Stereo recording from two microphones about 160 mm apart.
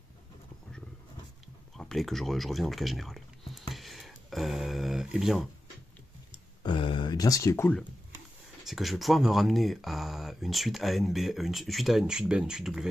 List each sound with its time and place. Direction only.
1.8 s speech: centre (ahead or behind)
6.6 s speech: 30° left (ahead or behind); by 7.8 s 15° left (ahead or behind)
8.6 s speech: centre (ahead or behind)